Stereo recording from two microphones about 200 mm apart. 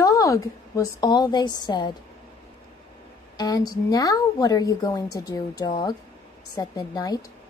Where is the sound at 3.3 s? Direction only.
20° left (ahead or behind).